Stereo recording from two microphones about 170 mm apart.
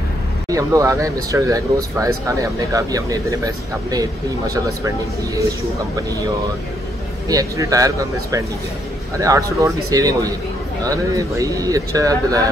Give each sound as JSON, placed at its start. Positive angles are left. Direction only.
{"t": 0.5, "sound": "speech", "side_deg": -20}
{"t": 7.2, "sound": "speech", "side_deg": -20}